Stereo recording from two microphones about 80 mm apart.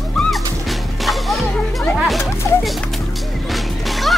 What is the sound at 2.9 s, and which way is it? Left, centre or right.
Music, centre.